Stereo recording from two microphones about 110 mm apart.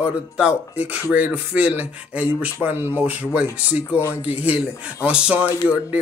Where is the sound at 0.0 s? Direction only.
10° right (ahead or behind).